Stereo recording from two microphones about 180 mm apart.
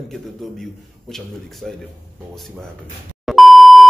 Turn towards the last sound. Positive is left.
turn(degrees=0)  # may be behind; listen again after turning